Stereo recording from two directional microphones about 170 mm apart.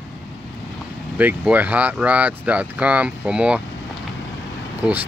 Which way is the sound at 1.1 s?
10° right (ahead or behind).